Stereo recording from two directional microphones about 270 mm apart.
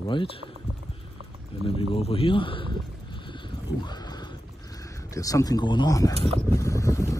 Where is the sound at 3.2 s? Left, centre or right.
Centre.